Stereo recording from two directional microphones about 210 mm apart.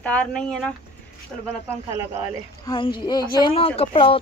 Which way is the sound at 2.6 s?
25° left (ahead or behind).